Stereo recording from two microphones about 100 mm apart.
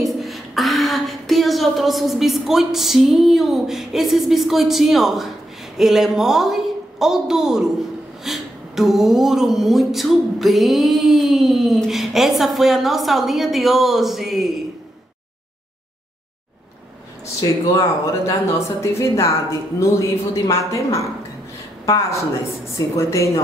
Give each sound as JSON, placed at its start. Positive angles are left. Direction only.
{"t": 0.0, "sound": "speech", "side_deg": 0}
{"t": 17.4, "sound": "speech", "side_deg": 40}
{"t": 18.8, "sound": "a woman's voice", "side_deg": 30}